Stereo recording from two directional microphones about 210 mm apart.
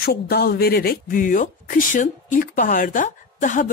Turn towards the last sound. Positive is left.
turn(degrees=35)  # may be behind; listen again after turning